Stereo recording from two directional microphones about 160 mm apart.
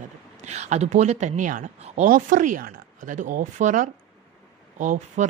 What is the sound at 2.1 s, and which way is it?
Speech, 55° right (ahead or behind).